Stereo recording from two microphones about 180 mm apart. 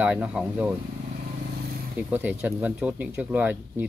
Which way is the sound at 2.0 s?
10° right (ahead or behind).